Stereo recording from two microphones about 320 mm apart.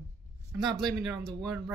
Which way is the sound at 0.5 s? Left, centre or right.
Centre.